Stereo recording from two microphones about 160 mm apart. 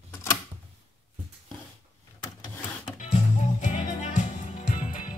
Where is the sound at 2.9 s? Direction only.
50° left (ahead or behind).